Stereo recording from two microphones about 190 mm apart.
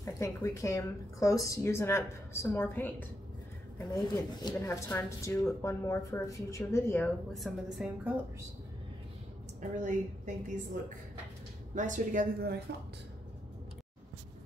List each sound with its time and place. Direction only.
0.0 s a woman's voice: 15° left (ahead or behind)
4.0 s a woman's voice: 20° left (ahead or behind)
7.3 s a woman's voice: centre (ahead or behind)
9.6 s a woman's voice: 40° right (ahead or behind)
11.7 s a woman's voice: 40° right (ahead or behind)